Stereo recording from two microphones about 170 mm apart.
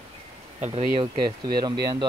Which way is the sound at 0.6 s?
40° right (ahead or behind).